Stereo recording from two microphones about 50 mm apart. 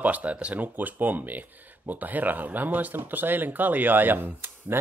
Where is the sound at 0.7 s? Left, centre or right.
Right.